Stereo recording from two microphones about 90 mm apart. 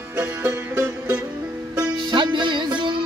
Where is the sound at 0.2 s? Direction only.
20° right (ahead or behind).